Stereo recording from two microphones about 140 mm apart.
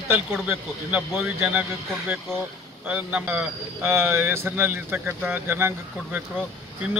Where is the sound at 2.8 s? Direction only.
10° right (ahead or behind).